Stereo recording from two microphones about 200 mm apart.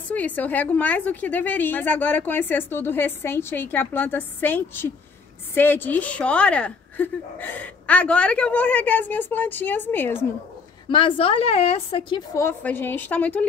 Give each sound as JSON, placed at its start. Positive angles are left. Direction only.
{"t": 0.1, "sound": "a woman's voice", "side_deg": 10}
{"t": 10.9, "sound": "a woman's voice", "side_deg": 25}
{"t": 12.4, "sound": "a woman's voice", "side_deg": 10}